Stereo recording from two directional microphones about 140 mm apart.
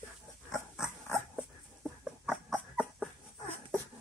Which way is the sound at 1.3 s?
5° right (ahead or behind).